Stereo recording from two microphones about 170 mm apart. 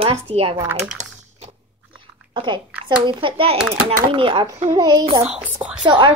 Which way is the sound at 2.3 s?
30° right (ahead or behind).